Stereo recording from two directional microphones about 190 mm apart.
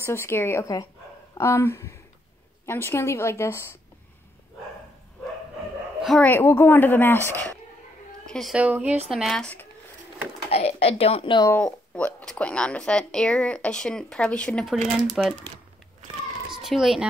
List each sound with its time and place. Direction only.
0.0 s a woman's voice: 15° left (ahead or behind)
6.0 s a woman's voice: 5° left (ahead or behind)
8.3 s speech: centre (ahead or behind)
10.5 s a woman's voice: 30° left (ahead or behind)
11.4 s speech: 10° left (ahead or behind)
16.6 s speech: centre (ahead or behind)